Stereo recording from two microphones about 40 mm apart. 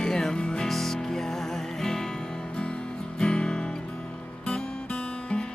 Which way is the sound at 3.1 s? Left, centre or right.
Left.